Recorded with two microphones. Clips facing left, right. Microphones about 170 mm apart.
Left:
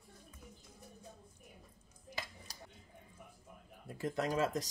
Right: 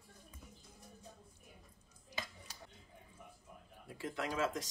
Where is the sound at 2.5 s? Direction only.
35° left (ahead or behind).